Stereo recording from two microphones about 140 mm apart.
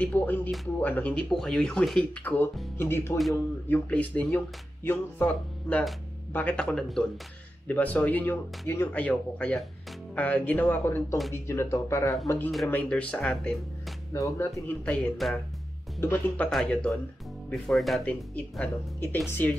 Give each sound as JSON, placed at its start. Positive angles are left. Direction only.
{"t": 0.0, "sound": "speech", "side_deg": 10}
{"t": 14.1, "sound": "speech", "side_deg": 20}
{"t": 14.9, "sound": "speech", "side_deg": 0}
{"t": 16.0, "sound": "speech", "side_deg": 15}